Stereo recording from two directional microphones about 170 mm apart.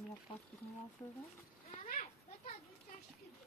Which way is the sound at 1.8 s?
45° left (ahead or behind).